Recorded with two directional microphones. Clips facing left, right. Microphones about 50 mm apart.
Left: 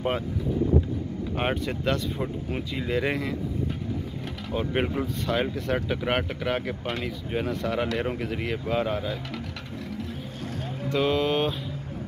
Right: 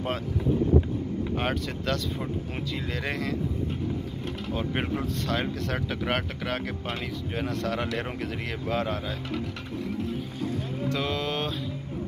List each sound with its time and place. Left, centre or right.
1.4 s speech: centre
4.5 s speech: centre
10.9 s speech: centre